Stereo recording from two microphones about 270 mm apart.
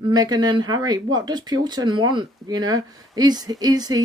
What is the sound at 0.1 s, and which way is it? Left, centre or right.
Speech, centre.